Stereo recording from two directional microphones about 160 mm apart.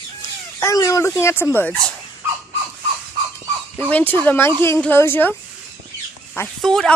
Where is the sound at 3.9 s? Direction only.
10° left (ahead or behind).